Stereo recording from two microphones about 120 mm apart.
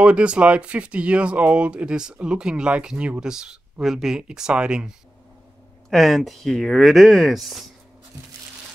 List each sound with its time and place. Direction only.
0.0 s speech: 10° right (ahead or behind)